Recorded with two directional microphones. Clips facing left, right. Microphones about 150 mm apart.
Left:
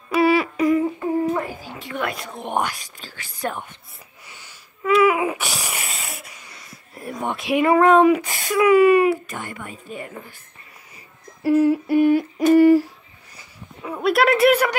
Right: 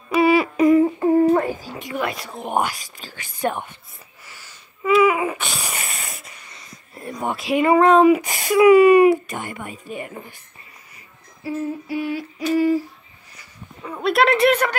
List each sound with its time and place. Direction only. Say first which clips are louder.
0.3 s humming: right 3 dB; 25° right (ahead or behind)
2.0 s speech: right 1 dB; centre (ahead or behind)
3.4 s speech: right 4 dB; 15° right (ahead or behind)
4.3 s wheeze: even; 15° left (ahead or behind)
4.8 s babbling: even; centre (ahead or behind)
6.5 s speech: even; centre (ahead or behind)
8.2 s speech: right 4 dB; 15° right (ahead or behind)
11.4 s a sound: left 9 dB; 75° left (ahead or behind); by 12.8 s 60° left (ahead or behind)
13.8 s speech: even; 5° left (ahead or behind)